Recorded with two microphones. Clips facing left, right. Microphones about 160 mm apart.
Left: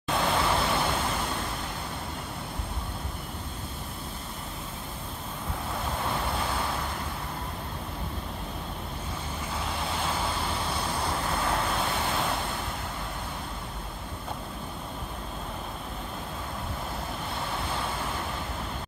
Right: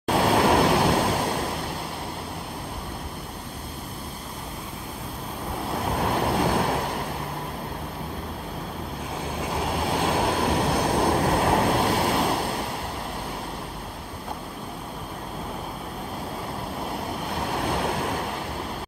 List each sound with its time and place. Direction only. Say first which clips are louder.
0.1 s vehicle: right 7 dB; 70° right (ahead or behind)
5.9 s train: right 7 dB; 65° right (ahead or behind)
9.4 s waves: right 7 dB; 65° right (ahead or behind)
17.6 s waves: right 9 dB; 65° right (ahead or behind)